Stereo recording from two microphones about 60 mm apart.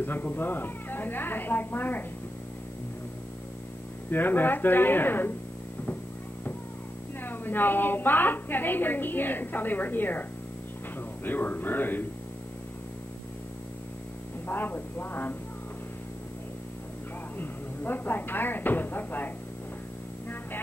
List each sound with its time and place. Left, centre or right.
0.0 s a woman's voice: left
4.1 s a woman's voice: left
7.2 s a woman's voice: left
11.2 s a woman's voice: left
14.5 s a woman's voice: left
17.4 s speech: left